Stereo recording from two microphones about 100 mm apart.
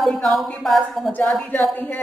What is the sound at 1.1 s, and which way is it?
Speech, 15° left (ahead or behind).